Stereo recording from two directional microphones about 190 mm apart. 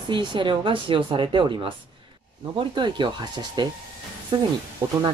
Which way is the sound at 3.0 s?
25° right (ahead or behind).